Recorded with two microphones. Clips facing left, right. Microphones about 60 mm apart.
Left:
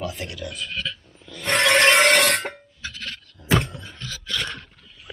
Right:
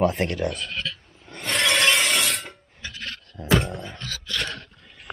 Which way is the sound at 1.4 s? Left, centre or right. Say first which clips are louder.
Left 4 dB; left.